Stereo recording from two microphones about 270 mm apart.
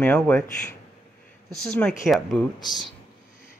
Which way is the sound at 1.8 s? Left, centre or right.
Centre.